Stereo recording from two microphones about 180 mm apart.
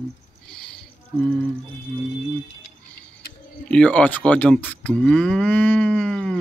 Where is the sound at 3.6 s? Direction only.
5° left (ahead or behind).